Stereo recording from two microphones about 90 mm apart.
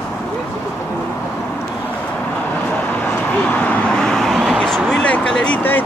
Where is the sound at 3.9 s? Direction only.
5° left (ahead or behind).